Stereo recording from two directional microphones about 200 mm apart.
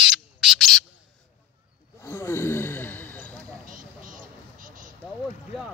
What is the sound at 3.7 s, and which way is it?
Vehicle, 40° right (ahead or behind).